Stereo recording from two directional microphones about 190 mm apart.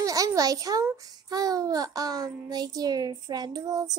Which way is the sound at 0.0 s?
15° right (ahead or behind).